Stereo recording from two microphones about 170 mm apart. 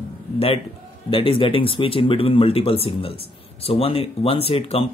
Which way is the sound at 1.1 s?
30° left (ahead or behind).